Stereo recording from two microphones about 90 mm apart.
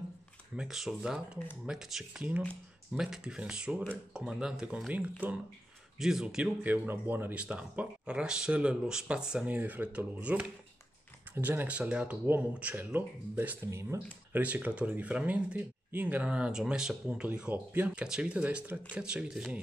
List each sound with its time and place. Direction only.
0.6 s speech: 5° right (ahead or behind); by 14.0 s 30° right (ahead or behind)
14.3 s speech: 20° right (ahead or behind)